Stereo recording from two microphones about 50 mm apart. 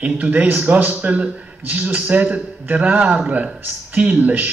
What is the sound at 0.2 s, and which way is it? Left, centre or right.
A man's voice, right.